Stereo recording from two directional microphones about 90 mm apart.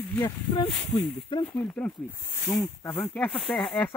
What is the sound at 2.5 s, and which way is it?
Speech, 25° left (ahead or behind).